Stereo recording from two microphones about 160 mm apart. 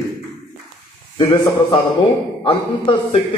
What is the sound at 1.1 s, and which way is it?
A man's voice, 30° left (ahead or behind).